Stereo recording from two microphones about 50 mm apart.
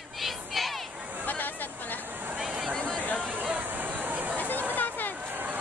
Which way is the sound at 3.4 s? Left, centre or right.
Right.